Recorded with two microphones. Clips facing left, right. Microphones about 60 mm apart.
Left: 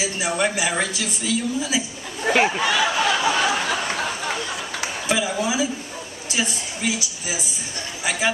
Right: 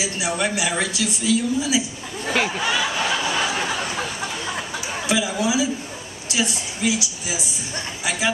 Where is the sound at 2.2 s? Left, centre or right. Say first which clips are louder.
Left 4 dB; left.